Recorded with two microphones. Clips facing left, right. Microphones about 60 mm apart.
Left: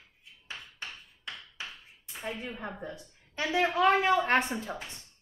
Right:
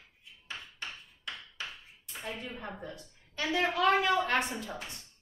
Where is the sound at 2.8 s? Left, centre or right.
Centre.